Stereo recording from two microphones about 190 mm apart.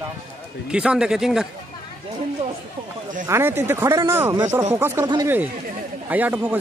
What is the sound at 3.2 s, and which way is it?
Speech, 15° right (ahead or behind).